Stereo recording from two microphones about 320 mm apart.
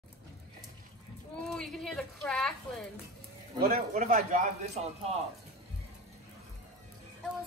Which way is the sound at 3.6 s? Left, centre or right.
Right.